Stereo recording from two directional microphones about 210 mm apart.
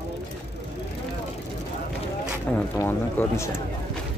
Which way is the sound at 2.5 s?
10° left (ahead or behind).